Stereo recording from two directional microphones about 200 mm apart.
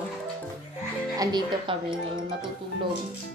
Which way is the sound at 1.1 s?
25° right (ahead or behind).